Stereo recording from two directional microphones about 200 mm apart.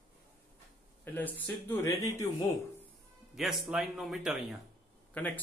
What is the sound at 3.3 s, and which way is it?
A man's voice, centre (ahead or behind).